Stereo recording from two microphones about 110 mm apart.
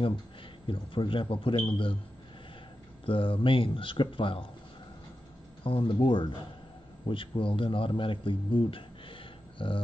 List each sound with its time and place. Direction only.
0.7 s speech: 50° left (ahead or behind)
3.1 s speech: 55° left (ahead or behind)
5.6 s a man's voice: 55° left (ahead or behind)